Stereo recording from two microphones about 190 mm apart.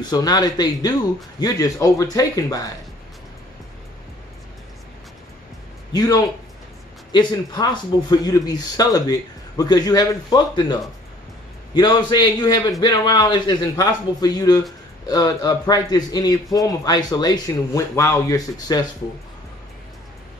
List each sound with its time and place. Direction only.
0.0 s a man's voice: 20° left (ahead or behind)
5.9 s speech: 20° left (ahead or behind)